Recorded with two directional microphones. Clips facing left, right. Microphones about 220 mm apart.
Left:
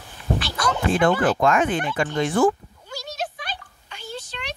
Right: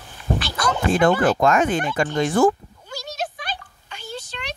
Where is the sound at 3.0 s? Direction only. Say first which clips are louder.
Right 1 dB; 45° right (ahead or behind).